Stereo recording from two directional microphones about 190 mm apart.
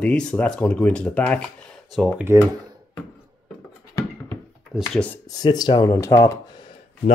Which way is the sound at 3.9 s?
15° left (ahead or behind).